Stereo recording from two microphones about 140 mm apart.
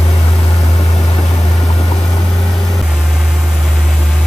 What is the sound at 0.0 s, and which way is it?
Vehicle, 45° left (ahead or behind).